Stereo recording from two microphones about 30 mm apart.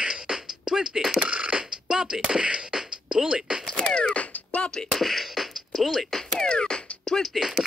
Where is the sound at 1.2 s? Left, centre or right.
Right.